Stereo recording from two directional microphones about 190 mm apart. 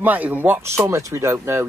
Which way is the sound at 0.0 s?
10° right (ahead or behind).